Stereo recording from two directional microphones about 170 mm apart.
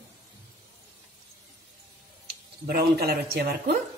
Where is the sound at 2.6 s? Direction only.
65° right (ahead or behind).